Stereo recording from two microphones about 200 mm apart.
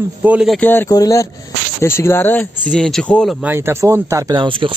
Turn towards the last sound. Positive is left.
turn(degrees=-25)  # may be behind; listen again after turning